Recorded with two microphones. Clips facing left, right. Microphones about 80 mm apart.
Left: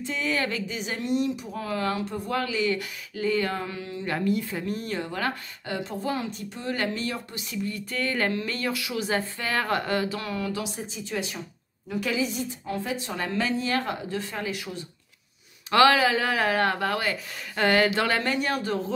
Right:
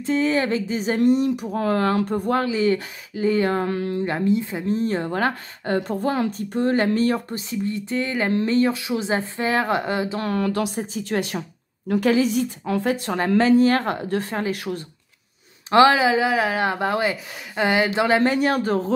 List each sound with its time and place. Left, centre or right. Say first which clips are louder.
0.0 s speech: right 7 dB; right
2.4 s speech: right 6 dB; right
3.6 s speech: right 10 dB; right
4.0 s speech: right 2 dB; right
8.3 s speech: right 9 dB; right
10.3 s speech: right 8 dB; right
12.8 s speech: right 8 dB; right
13.4 s speech: right 10 dB; right
15.7 s speech: right 4 dB; right
18.3 s speech: right 6 dB; right